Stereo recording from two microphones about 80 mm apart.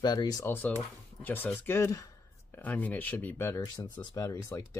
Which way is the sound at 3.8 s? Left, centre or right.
Left.